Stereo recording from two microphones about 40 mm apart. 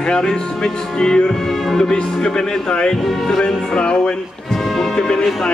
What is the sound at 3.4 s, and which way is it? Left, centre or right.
Speech, left.